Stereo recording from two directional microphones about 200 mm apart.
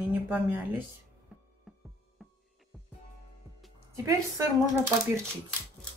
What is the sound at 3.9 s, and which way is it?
Speech, 15° right (ahead or behind).